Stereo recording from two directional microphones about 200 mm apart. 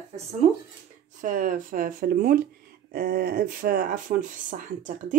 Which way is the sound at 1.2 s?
40° right (ahead or behind).